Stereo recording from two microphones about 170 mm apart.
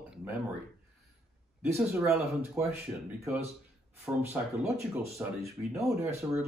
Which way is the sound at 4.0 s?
10° right (ahead or behind).